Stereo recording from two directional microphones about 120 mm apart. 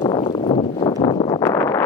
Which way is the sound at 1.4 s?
25° left (ahead or behind).